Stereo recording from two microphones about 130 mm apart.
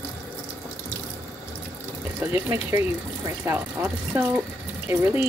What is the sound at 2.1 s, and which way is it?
Speech, 20° right (ahead or behind).